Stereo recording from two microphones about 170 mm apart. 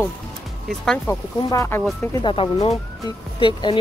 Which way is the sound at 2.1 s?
30° left (ahead or behind).